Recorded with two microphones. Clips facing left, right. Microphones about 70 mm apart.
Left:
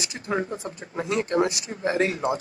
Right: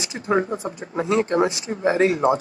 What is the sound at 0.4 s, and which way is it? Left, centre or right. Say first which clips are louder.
Speech: right 5 dB; right.